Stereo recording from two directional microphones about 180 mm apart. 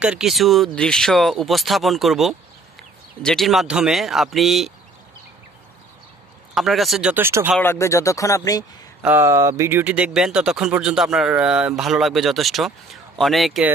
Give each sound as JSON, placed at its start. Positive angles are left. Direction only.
{"t": 0.0, "sound": "speech", "side_deg": -5}
{"t": 6.5, "sound": "speech", "side_deg": 0}
{"t": 7.6, "sound": "speech", "side_deg": 15}
{"t": 9.0, "sound": "speech", "side_deg": -15}